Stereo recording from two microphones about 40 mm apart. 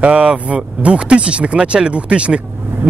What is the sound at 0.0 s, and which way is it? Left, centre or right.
Speech, right.